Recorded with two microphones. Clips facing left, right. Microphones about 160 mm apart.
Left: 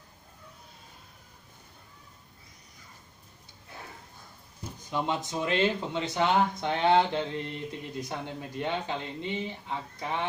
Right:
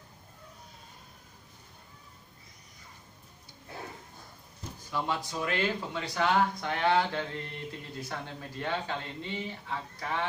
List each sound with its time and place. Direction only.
4.7 s speech: 20° left (ahead or behind)